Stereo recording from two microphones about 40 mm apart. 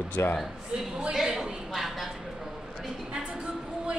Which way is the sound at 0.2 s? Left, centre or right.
Left.